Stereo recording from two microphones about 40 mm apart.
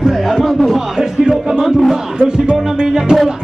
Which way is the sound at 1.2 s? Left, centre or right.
Centre.